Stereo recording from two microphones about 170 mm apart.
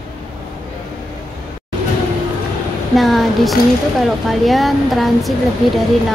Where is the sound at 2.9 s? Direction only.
Centre (ahead or behind).